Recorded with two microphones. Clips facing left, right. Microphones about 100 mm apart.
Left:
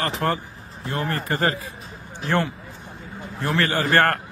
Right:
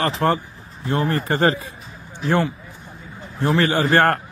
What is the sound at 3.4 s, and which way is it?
Speech, 20° right (ahead or behind).